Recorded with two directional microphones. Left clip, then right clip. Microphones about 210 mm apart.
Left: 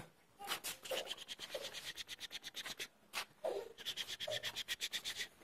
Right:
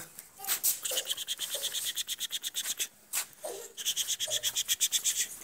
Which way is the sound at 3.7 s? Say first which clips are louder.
Right 11 dB; centre (ahead or behind).